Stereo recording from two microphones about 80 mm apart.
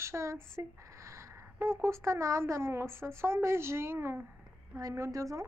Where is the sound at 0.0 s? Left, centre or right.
Right.